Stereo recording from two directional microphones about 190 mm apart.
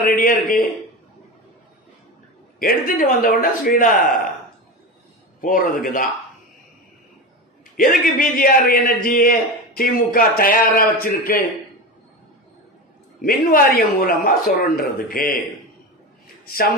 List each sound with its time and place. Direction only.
0.0 s a man's voice: 45° left (ahead or behind)
2.6 s a man's voice: 50° left (ahead or behind)
5.4 s a man's voice: 45° left (ahead or behind)
7.7 s a man's voice: 45° left (ahead or behind)
13.2 s a man's voice: 50° left (ahead or behind)
16.4 s speech: 50° left (ahead or behind)